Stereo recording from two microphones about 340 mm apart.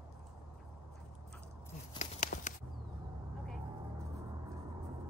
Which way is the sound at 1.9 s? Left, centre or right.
Left.